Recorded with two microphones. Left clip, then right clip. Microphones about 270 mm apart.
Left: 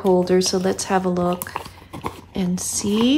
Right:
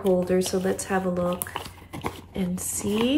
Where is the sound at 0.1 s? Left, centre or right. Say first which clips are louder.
Left 6 dB; centre.